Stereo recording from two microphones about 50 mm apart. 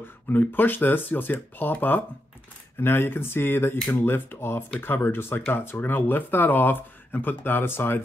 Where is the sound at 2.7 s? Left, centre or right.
Left.